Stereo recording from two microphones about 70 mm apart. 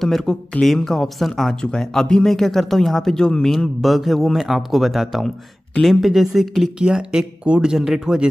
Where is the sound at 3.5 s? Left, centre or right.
Centre.